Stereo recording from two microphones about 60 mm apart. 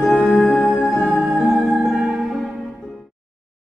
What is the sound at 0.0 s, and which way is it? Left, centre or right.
Music, centre.